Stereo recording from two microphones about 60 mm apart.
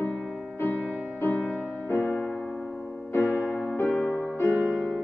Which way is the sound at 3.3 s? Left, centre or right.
Centre.